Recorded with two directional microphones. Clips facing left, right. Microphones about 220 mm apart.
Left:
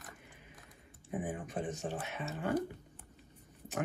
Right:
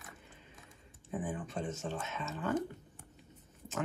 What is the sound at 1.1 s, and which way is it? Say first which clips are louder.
Speech: even; 15° left (ahead or behind).